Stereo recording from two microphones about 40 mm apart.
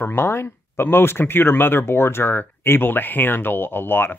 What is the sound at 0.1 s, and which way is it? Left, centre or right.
Speech, left.